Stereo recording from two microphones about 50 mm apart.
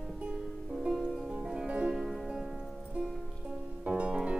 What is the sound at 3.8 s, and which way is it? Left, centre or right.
Music, right.